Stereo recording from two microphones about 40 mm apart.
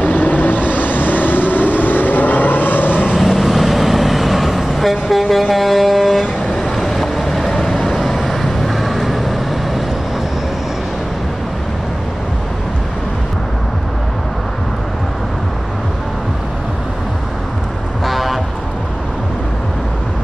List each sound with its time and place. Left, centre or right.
0.0 s vehicle: left
3.2 s vehicle: centre
18.0 s vehicle: centre